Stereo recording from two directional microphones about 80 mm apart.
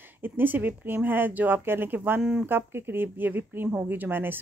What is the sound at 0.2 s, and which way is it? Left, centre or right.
Speech, right.